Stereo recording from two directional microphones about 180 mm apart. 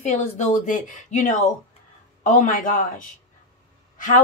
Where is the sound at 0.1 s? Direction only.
40° left (ahead or behind).